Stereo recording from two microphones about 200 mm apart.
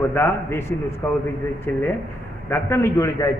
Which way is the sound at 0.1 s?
10° left (ahead or behind).